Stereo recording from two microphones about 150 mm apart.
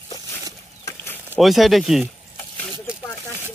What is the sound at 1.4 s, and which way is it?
Speech, centre (ahead or behind).